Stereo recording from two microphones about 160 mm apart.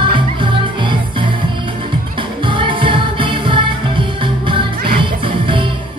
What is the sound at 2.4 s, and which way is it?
Music, 30° right (ahead or behind).